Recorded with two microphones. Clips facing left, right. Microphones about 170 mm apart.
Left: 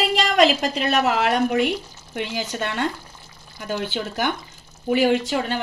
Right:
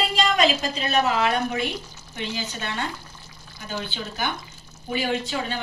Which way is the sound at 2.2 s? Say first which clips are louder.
Left 5 dB; 85° left.